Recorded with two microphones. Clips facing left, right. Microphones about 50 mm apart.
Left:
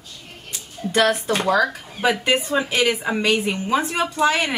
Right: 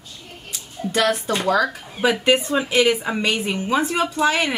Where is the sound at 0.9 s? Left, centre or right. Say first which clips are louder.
Left 2 dB; centre.